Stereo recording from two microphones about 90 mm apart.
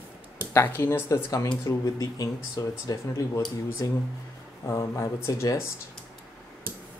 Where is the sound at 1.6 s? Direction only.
45° left (ahead or behind).